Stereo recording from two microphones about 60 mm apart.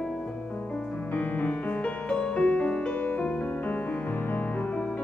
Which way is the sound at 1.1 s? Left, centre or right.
Left.